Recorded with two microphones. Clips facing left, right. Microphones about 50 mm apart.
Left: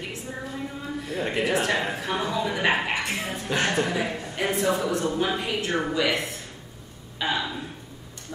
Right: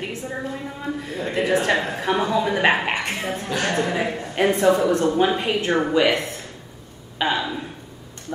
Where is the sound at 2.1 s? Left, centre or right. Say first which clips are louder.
Right 7 dB; right.